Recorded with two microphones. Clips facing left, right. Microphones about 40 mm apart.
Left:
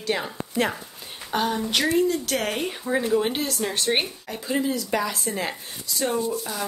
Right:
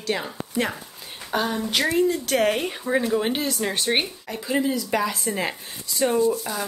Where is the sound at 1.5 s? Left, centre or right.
Centre.